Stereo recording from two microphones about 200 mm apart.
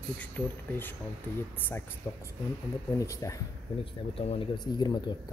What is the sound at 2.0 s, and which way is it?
Speech, 15° left (ahead or behind).